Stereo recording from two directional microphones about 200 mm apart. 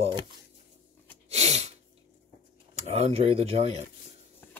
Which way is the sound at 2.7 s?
30° right (ahead or behind).